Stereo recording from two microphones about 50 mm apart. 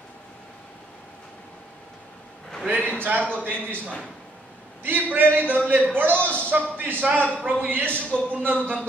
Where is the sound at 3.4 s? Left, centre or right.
Right.